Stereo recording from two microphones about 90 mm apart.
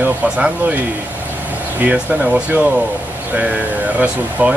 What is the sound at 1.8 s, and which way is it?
Speech, 15° right (ahead or behind).